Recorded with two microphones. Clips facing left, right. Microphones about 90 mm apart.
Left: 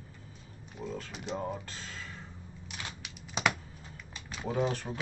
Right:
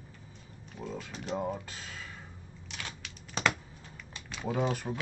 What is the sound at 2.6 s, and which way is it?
Typing, 10° left (ahead or behind).